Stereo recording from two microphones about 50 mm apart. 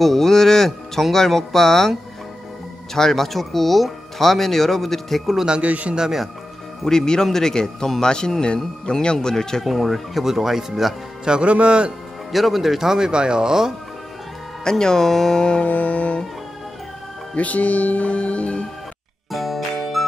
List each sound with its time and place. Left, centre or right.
0.0 s speech: centre
5.6 s a man's voice: right
5.9 s speech: centre
6.8 s speech: centre
11.2 s a man's voice: centre
12.3 s speech: centre
14.6 s speech: centre
15.6 s music: left
17.4 s speech: left
19.3 s music: centre